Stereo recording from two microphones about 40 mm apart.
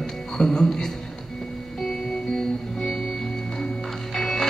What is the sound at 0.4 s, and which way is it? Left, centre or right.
Speech, centre.